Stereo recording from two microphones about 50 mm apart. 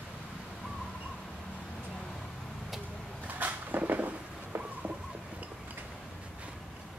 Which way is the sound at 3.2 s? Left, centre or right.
Right.